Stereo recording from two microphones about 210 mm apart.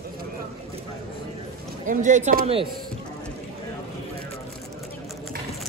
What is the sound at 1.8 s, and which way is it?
Speech, 35° right (ahead or behind).